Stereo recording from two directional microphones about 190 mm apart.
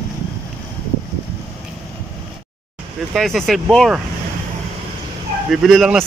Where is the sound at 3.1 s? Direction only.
Centre (ahead or behind).